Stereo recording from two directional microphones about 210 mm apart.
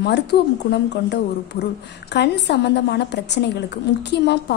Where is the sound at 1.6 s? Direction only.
55° left (ahead or behind).